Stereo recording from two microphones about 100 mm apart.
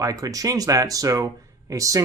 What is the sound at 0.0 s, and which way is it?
Speech, 35° right (ahead or behind).